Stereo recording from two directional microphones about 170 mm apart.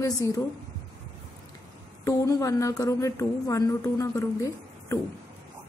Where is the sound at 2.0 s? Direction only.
20° left (ahead or behind).